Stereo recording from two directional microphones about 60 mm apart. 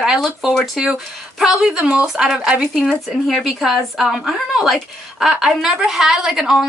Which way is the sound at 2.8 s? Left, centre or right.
Centre.